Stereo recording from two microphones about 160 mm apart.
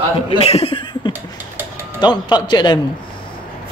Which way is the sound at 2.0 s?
25° left (ahead or behind).